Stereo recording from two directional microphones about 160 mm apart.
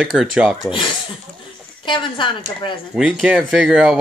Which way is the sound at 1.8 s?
30° left (ahead or behind).